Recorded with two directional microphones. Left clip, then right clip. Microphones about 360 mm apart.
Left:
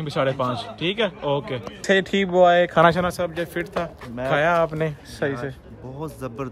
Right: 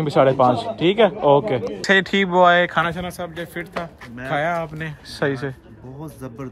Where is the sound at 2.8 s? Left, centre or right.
Centre.